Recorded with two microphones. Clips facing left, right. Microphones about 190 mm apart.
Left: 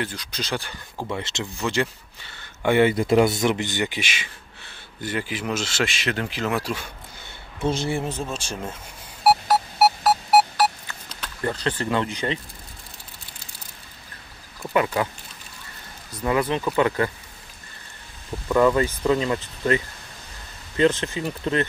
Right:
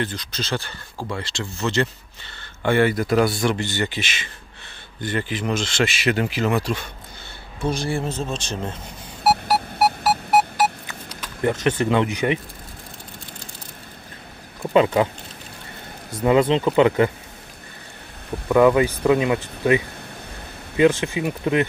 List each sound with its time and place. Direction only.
0.0 s speech: 10° left (ahead or behind)
5.9 s speech: 10° right (ahead or behind)
7.6 s speech: 20° left (ahead or behind)
9.2 s sonar: centre (ahead or behind)
10.6 s a sound: 15° right (ahead or behind)
14.7 s speech: 20° right (ahead or behind)
16.1 s speech: 25° right (ahead or behind)
18.5 s speech: 10° right (ahead or behind)
20.7 s speech: 10° right (ahead or behind)